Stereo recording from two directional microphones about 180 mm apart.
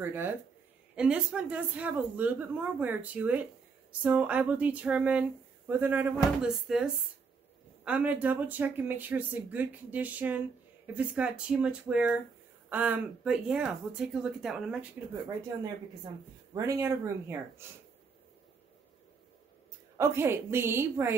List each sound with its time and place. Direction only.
0.0 s speech: 10° right (ahead or behind)
16.5 s speech: 15° right (ahead or behind)
20.0 s speech: 15° right (ahead or behind)